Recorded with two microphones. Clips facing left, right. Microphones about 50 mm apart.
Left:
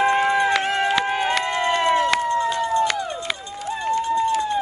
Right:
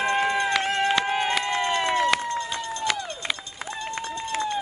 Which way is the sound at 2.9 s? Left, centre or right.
Centre.